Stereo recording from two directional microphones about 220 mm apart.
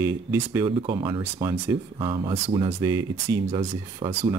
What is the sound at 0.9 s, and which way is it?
Speech, 20° right (ahead or behind).